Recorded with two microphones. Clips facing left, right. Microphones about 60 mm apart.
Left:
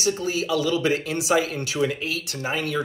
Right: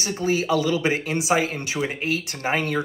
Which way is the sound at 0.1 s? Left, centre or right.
Right.